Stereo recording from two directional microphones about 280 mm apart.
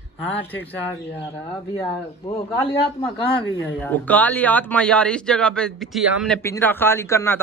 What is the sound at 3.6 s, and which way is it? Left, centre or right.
Speech, centre.